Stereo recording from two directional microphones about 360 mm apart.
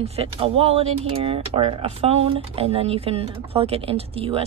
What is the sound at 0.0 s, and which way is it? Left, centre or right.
Speech, centre.